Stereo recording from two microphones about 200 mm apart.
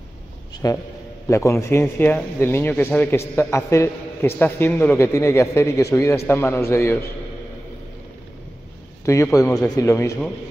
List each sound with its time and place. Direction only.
0.6 s a man's voice: 15° left (ahead or behind)
9.0 s a man's voice: 15° left (ahead or behind)